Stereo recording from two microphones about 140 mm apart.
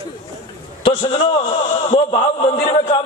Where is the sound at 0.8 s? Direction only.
40° left (ahead or behind).